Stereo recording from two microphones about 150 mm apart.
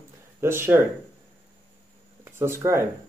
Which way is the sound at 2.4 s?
15° right (ahead or behind).